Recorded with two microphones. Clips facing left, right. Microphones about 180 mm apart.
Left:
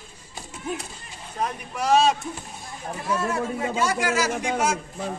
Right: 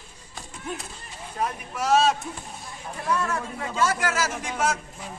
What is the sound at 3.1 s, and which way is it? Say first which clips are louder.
Speech: left 1 dB; 30° left (ahead or behind).